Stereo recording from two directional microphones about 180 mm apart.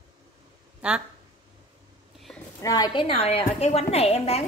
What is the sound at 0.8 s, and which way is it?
Speech, 5° right (ahead or behind).